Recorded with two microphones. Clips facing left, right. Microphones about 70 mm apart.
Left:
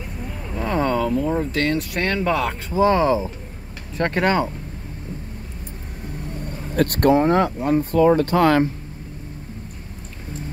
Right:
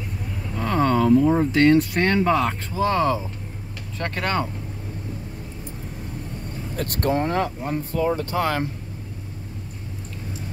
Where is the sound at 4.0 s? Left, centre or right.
Left.